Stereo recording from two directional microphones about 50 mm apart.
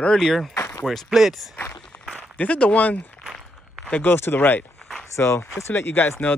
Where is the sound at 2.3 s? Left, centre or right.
Left.